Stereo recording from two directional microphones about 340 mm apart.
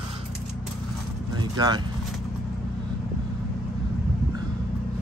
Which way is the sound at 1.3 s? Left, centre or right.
Centre.